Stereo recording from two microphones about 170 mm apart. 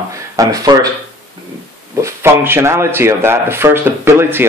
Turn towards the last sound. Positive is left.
turn(degrees=-15)  # may be behind; listen again after turning